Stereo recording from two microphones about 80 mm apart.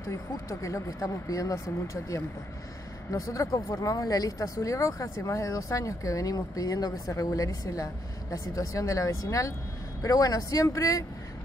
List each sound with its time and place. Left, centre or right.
0.0 s speech: left
3.1 s speech: left